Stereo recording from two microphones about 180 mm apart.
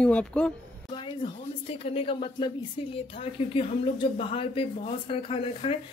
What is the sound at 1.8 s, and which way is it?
Speech, 30° left (ahead or behind).